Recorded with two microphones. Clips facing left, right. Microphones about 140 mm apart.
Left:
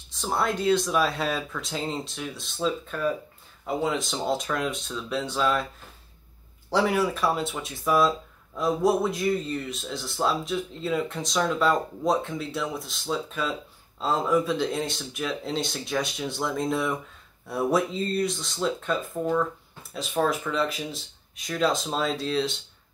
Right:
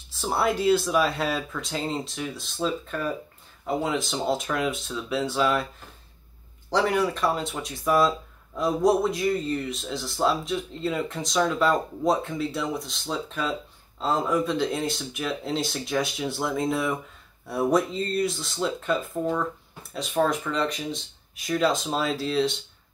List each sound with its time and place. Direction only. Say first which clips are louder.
0.1 s speech: right 2 dB; 5° right (ahead or behind)
6.7 s speech: even; 5° left (ahead or behind)